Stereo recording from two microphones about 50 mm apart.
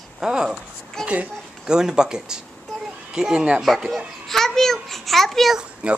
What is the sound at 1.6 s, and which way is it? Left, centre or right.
A child's voice, centre.